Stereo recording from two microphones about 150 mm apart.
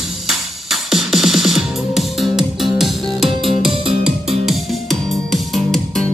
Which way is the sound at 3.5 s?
35° right (ahead or behind).